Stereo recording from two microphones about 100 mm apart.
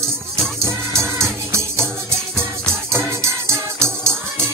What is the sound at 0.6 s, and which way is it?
Music, 30° right (ahead or behind).